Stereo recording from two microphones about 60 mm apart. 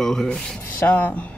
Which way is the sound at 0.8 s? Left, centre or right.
Left.